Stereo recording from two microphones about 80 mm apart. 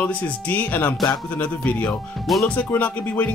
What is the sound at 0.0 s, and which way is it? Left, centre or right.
Music, centre.